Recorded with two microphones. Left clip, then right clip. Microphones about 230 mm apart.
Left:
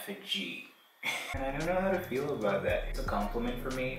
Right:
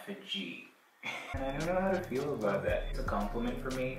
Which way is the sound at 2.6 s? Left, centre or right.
Centre.